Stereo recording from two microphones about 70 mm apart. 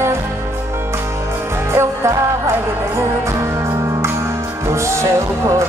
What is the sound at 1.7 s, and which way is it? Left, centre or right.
Music, right.